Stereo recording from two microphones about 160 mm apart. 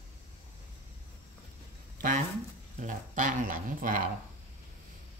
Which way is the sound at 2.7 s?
55° right (ahead or behind).